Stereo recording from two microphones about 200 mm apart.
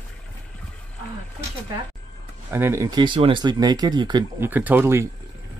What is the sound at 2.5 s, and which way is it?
Speech, 15° right (ahead or behind).